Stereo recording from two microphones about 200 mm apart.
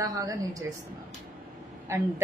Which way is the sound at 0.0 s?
15° right (ahead or behind).